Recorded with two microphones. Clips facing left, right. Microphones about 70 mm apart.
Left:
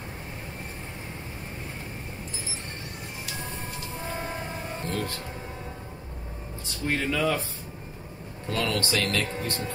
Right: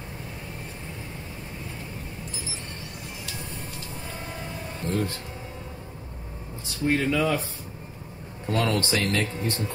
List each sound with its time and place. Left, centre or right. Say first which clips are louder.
4.1 s vehicle: left 6 dB; left
4.9 s speech: right 5 dB; right
6.9 s speech: right 2 dB; right
8.5 s speech: right 3 dB; right